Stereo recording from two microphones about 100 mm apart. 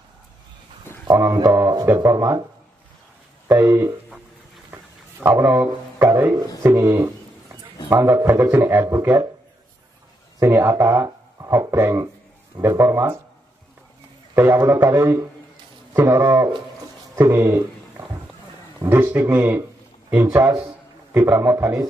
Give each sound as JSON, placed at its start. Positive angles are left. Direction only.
{"t": 0.9, "sound": "a sound", "side_deg": 20}
{"t": 1.2, "sound": "speech", "side_deg": -40}
{"t": 3.4, "sound": "a sound", "side_deg": -20}
{"t": 5.2, "sound": "a man's voice", "side_deg": -20}
{"t": 6.2, "sound": "music", "side_deg": -35}
{"t": 6.6, "sound": "a sound", "side_deg": -30}
{"t": 7.9, "sound": "a man's voice", "side_deg": -25}
{"t": 10.4, "sound": "a man's voice", "side_deg": -25}
{"t": 14.3, "sound": "a man's voice", "side_deg": -25}
{"t": 18.9, "sound": "a man's voice", "side_deg": -20}